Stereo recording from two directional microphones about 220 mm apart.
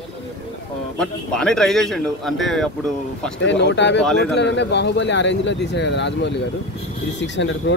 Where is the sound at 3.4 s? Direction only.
55° left (ahead or behind).